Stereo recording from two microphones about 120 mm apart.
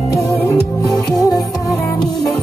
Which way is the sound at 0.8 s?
30° left (ahead or behind).